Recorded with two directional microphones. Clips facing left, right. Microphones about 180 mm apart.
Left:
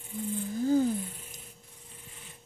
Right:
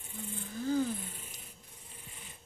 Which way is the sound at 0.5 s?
40° left (ahead or behind).